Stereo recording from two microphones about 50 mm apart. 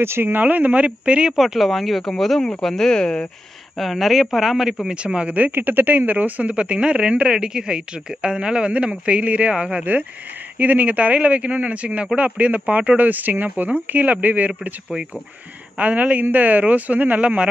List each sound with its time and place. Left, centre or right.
0.0 s speech: right
1.3 s speech: centre
2.9 s speech: centre
3.7 s speech: centre
4.8 s speech: right
5.5 s speech: right
10.6 s speech: right
15.8 s speech: right